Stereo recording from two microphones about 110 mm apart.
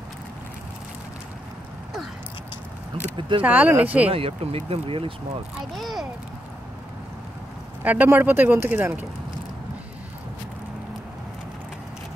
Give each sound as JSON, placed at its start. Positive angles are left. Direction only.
{"t": 3.2, "sound": "speech", "side_deg": -50}
{"t": 3.4, "sound": "speech", "side_deg": -15}
{"t": 4.1, "sound": "speech", "side_deg": -60}
{"t": 5.8, "sound": "a child's voice", "side_deg": 0}
{"t": 7.8, "sound": "speech", "side_deg": -15}